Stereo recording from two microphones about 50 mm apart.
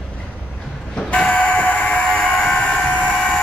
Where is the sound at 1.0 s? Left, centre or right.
Left.